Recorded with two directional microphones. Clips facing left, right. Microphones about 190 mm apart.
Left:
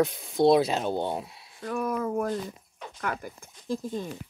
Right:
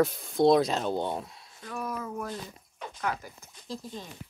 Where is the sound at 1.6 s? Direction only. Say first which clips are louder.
Left 7 dB; 55° left (ahead or behind).